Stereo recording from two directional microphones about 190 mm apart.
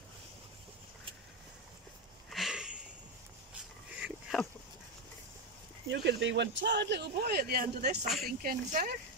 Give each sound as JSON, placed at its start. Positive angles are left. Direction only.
{"t": 2.2, "sound": "sniff", "side_deg": 0}
{"t": 4.0, "sound": "a sound", "side_deg": 0}
{"t": 5.9, "sound": "speech", "side_deg": -65}
{"t": 8.0, "sound": "speech", "side_deg": 0}
{"t": 8.3, "sound": "speech", "side_deg": -50}